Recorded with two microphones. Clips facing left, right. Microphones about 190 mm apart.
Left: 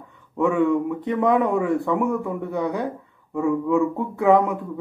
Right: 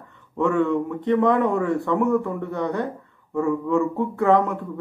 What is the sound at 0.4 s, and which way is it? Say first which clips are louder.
Speech: left 1 dB; 5° left (ahead or behind).